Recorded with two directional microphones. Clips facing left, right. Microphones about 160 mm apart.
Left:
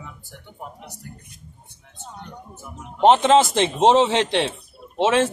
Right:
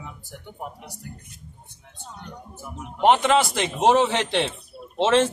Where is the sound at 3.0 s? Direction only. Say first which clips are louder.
Left 4 dB; 25° left (ahead or behind).